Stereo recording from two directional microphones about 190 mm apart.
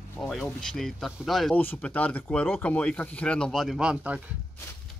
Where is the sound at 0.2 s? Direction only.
Centre (ahead or behind).